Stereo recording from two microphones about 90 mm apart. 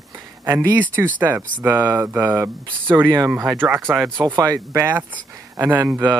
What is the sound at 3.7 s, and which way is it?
Speech, centre (ahead or behind).